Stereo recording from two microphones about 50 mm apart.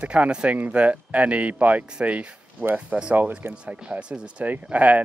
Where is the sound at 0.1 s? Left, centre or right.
Right.